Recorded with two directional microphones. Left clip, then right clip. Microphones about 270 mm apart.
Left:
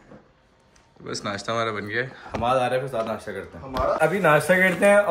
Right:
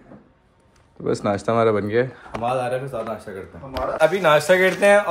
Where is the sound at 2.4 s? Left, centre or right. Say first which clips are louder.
Left 1 dB; centre.